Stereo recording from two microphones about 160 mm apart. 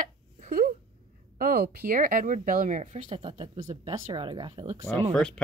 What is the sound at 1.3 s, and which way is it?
Speech, 70° right (ahead or behind).